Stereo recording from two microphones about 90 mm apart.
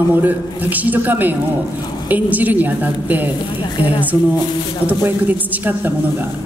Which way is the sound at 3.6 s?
70° left (ahead or behind).